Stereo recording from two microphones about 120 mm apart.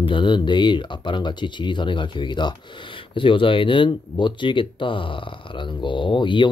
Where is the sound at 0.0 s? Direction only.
40° left (ahead or behind).